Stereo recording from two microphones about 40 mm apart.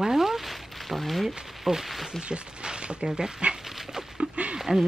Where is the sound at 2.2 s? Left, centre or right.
Right.